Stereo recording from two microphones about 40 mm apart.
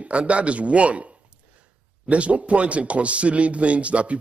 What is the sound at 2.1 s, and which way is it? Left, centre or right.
A man's voice, right.